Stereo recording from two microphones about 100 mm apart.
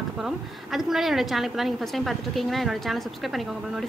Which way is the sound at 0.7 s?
5° right (ahead or behind).